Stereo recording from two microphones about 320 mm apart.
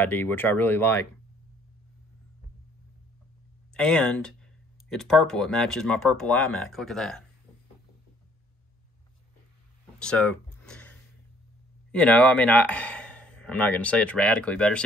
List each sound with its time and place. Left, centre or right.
0.0 s speech: centre
3.7 s speech: centre
9.9 s a sound: centre
11.9 s a man's voice: centre